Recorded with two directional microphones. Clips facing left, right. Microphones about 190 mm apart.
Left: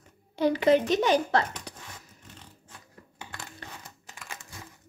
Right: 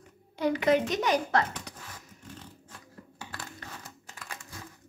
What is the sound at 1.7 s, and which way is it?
Dog, 30° left (ahead or behind).